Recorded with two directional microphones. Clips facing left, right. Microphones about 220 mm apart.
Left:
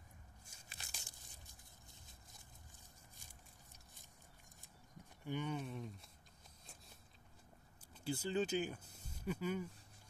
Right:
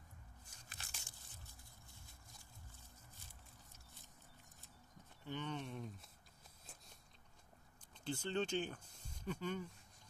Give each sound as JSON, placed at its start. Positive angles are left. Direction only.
{"t": 0.7, "sound": "biting", "side_deg": 10}
{"t": 5.2, "sound": "a sound", "side_deg": 10}
{"t": 6.6, "sound": "biting", "side_deg": 0}
{"t": 8.0, "sound": "speech", "side_deg": 10}